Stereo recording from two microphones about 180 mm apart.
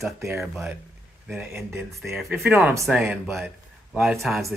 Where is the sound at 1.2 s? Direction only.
10° right (ahead or behind).